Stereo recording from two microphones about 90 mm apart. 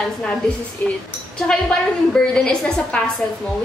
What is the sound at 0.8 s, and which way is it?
Speech, 20° left (ahead or behind).